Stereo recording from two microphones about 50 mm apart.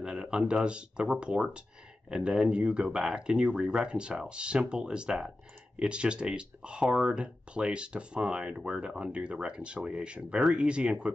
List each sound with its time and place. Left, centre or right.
0.0 s speech: centre